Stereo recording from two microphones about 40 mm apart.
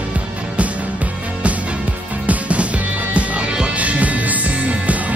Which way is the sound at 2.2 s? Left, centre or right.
Right.